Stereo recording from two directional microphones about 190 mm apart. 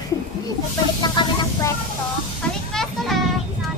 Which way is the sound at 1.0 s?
20° left (ahead or behind).